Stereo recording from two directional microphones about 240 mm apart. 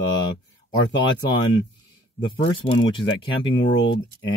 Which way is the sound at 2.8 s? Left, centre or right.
Centre.